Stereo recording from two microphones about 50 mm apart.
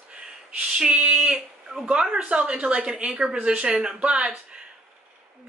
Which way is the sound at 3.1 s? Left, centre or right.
Centre.